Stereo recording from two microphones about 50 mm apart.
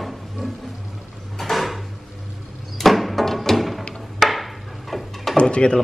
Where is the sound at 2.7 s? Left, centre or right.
Centre.